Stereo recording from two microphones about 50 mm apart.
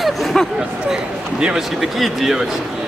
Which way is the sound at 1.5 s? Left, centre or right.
Centre.